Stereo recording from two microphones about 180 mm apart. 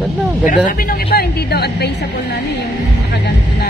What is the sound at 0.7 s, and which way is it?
A woman's voice, 55° left (ahead or behind).